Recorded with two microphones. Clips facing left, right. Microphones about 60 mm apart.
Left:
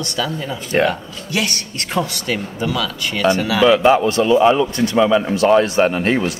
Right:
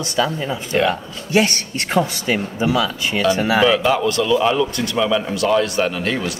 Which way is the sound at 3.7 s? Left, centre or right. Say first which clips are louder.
Left 4 dB; left.